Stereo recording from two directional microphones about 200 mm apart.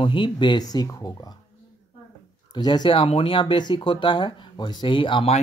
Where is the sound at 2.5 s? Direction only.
20° left (ahead or behind).